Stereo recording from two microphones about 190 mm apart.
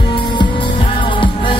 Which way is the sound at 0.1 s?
25° left (ahead or behind).